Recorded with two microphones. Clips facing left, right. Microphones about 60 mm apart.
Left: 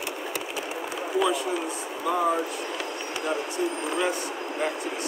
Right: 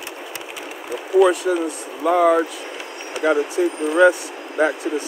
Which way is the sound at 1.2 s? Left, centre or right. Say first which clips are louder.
Right 10 dB; right.